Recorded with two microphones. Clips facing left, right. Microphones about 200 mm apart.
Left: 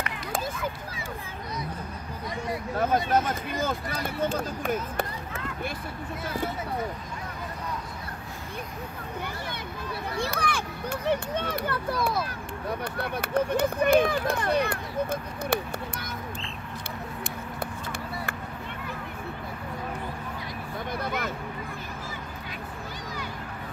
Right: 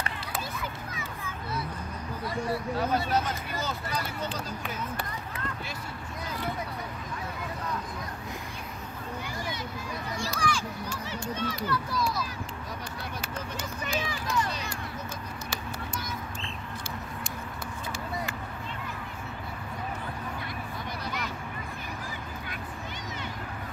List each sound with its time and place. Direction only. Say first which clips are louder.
2.8 s speech: left 6 dB; 50° left (ahead or behind)
10.1 s run: left 2 dB; 60° left (ahead or behind)
21.0 s a sound: left 5 dB; 55° left (ahead or behind)